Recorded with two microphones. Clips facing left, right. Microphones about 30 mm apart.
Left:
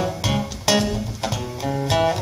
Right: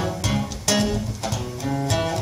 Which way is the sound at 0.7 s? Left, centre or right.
Left.